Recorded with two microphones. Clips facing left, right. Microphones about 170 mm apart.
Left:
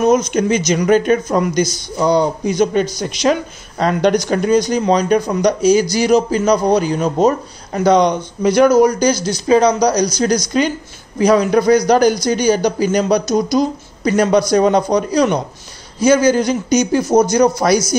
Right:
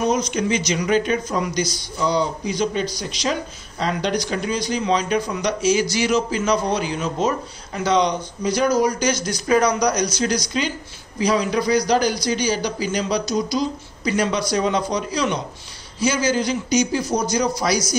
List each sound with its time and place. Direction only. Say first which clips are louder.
0.0 s speech: left 7 dB; 50° left (ahead or behind); by 8.8 s 65° left (ahead or behind)
8.8 s speech: left 7 dB; 35° left (ahead or behind)